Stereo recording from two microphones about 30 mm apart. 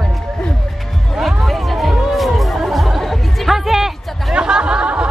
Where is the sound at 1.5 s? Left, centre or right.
Centre.